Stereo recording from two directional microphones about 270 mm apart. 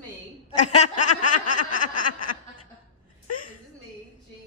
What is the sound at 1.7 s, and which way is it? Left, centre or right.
Speech, left.